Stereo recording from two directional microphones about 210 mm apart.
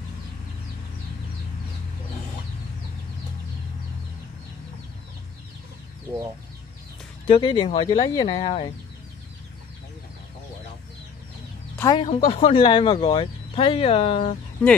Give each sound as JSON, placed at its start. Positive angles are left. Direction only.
{"t": 7.2, "sound": "speech", "side_deg": 25}
{"t": 11.8, "sound": "speech", "side_deg": 25}